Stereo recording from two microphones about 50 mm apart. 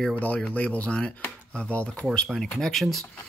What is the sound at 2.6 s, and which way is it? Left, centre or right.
Speech, centre.